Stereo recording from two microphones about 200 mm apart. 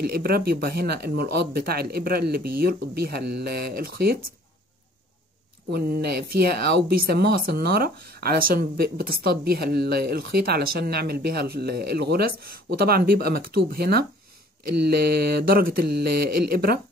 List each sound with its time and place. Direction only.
0.0 s speech: 50° right (ahead or behind)
5.7 s speech: 50° right (ahead or behind)